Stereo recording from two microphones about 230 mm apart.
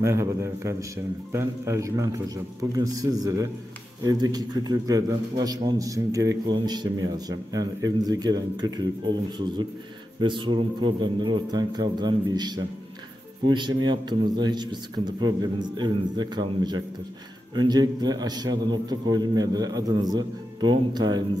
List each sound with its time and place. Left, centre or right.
0.0 s a man's voice: centre
10.2 s a man's voice: right